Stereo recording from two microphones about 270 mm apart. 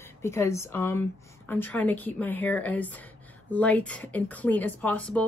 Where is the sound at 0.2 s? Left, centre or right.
Centre.